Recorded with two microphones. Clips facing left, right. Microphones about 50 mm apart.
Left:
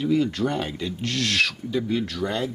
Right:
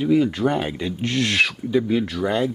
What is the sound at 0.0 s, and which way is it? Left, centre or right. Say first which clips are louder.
Speech: right 4 dB; centre.